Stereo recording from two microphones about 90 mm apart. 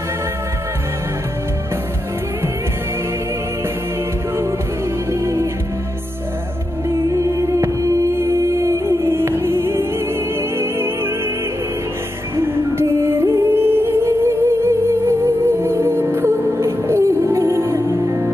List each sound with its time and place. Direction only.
5.2 s music: 30° right (ahead or behind)
6.9 s music: 35° right (ahead or behind)
12.4 s music: 30° right (ahead or behind)